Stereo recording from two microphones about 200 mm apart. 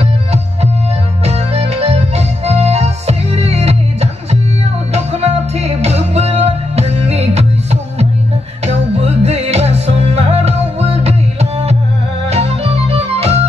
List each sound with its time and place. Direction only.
0.0 s music: 30° right (ahead or behind)